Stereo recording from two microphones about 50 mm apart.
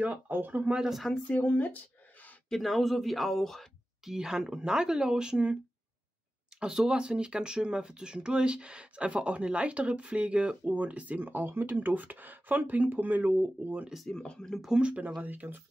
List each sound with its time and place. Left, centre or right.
0.3 s speech: right
0.8 s a man's voice: centre
1.4 s speech: left
2.5 s a man's voice: centre
4.0 s speech: centre
6.6 s speech: centre; by 13.8 s right
14.1 s speech: centre
14.7 s speech: right
15.2 s speech: right